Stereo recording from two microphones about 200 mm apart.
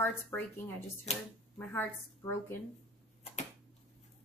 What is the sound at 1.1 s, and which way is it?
Speech, 30° left (ahead or behind).